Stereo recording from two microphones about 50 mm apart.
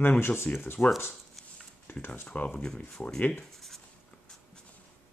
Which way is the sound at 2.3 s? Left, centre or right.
Left.